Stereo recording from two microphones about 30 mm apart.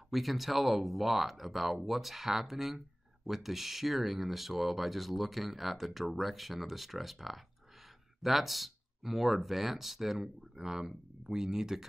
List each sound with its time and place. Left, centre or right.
0.1 s speech: centre